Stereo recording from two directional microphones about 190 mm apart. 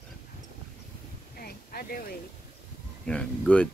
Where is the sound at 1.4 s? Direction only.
50° left (ahead or behind).